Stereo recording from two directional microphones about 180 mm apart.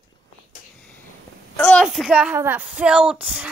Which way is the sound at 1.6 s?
5° left (ahead or behind).